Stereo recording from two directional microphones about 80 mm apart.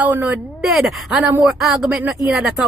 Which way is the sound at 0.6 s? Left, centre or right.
Centre.